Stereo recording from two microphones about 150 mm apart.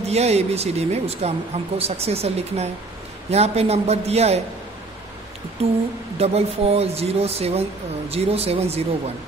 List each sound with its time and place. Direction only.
0.0 s speech: 45° right (ahead or behind)
6.1 s speech: 45° right (ahead or behind)